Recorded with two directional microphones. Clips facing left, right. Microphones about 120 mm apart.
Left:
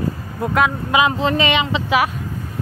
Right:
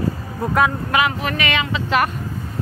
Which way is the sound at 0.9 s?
20° left (ahead or behind).